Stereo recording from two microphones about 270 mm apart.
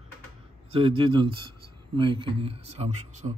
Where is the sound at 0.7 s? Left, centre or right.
Centre.